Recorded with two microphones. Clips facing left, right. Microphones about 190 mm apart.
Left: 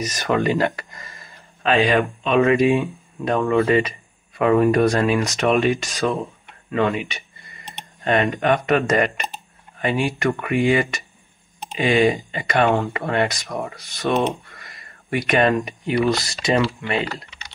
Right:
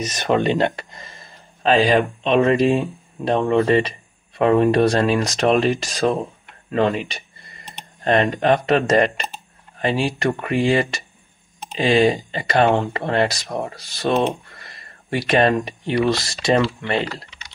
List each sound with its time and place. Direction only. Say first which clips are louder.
0.0 s speech: right 2 dB; 25° right (ahead or behind)
8.0 s speech: right 2 dB; 35° right (ahead or behind)
14.2 s a sound: right 1 dB; 30° right (ahead or behind)
16.3 s speech: right 2 dB; 35° right (ahead or behind)